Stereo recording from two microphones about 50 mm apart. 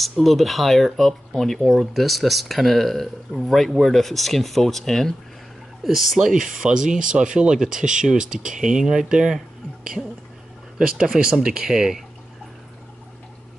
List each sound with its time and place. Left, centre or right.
0.2 s speech: centre
5.9 s speech: centre
6.3 s speech: centre
11.1 s speech: centre